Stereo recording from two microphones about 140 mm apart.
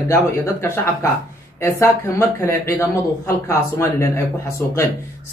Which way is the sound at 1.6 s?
15° left (ahead or behind).